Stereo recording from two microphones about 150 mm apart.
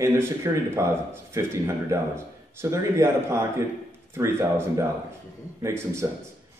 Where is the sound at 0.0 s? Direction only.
20° right (ahead or behind).